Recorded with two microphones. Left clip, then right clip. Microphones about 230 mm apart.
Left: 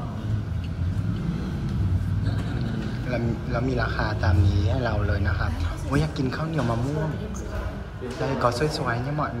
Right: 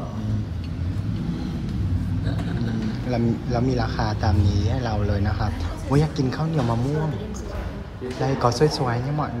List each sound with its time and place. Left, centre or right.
3.1 s speech: centre
8.2 s speech: centre